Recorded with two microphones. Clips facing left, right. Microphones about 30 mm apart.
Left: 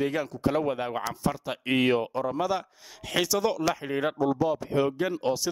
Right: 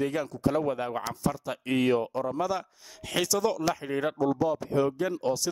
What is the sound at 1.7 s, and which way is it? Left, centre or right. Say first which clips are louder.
Speech: left 1 dB; left.